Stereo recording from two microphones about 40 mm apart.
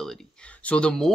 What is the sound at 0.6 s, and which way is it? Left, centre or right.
Speech, left.